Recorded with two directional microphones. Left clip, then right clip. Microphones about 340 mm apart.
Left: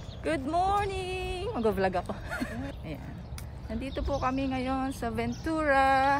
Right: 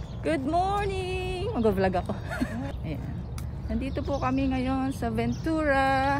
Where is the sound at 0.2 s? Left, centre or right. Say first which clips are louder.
Right 2 dB; centre.